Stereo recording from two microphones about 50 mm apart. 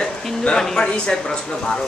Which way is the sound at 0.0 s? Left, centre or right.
Centre.